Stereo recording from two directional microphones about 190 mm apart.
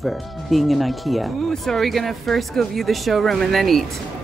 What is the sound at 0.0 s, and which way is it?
Speech, centre (ahead or behind).